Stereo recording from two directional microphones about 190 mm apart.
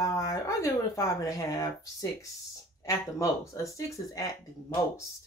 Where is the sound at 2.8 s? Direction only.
15° left (ahead or behind).